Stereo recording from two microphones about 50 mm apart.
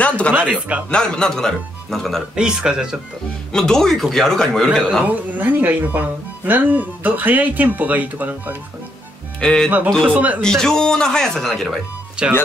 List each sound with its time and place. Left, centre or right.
0.0 s a sound: left
0.5 s speech: right
0.8 s speech: centre
2.3 s speech: centre
3.5 s speech: centre
5.0 s speech: right
9.4 s speech: centre
10.0 s speech: right
10.4 s speech: centre
12.2 s speech: centre